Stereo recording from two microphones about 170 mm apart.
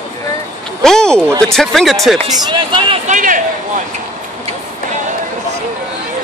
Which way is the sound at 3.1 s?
50° right (ahead or behind).